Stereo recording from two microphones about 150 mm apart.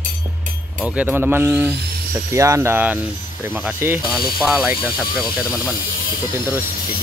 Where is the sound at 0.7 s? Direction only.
10° right (ahead or behind).